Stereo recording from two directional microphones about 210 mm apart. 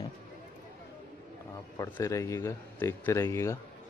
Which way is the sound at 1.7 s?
15° left (ahead or behind).